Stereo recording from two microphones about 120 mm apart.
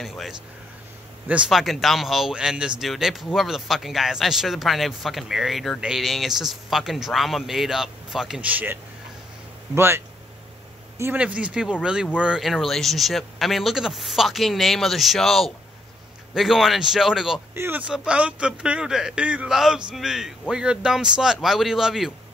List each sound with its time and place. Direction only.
0.0 s speech: centre (ahead or behind)
9.8 s speech: 20° right (ahead or behind); by 17.4 s 5° right (ahead or behind)
17.6 s speech: 15° right (ahead or behind)